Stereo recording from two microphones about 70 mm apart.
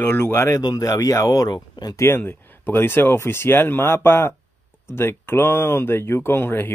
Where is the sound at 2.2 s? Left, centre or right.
Left.